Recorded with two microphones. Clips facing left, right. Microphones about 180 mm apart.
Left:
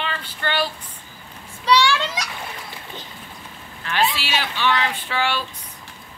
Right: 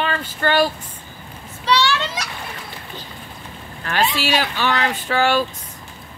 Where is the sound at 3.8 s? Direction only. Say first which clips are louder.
Right 2 dB; 45° right (ahead or behind).